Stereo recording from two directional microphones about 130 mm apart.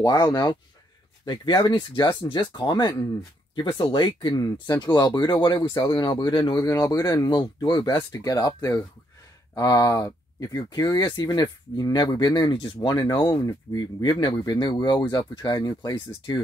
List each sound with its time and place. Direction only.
0.0 s speech: 30° left (ahead or behind)
6.6 s speech: 20° left (ahead or behind)